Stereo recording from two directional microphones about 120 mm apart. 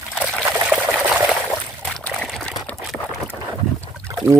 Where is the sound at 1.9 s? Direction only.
5° left (ahead or behind).